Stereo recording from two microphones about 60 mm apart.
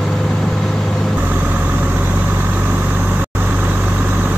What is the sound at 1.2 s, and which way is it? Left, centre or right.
Vehicle, right.